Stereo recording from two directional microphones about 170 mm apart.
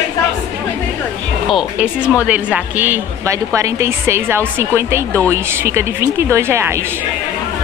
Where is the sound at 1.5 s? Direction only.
5° right (ahead or behind).